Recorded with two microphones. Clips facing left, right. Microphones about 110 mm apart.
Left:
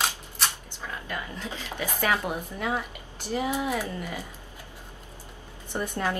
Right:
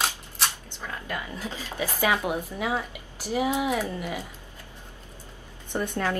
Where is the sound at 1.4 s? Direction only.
5° right (ahead or behind).